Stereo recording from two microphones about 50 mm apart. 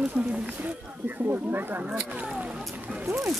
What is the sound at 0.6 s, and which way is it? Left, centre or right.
Speech, right.